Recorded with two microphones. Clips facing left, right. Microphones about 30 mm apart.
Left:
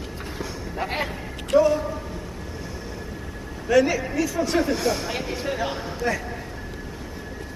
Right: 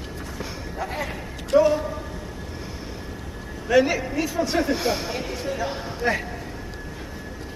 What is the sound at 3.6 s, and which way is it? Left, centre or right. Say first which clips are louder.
Speech: even; centre.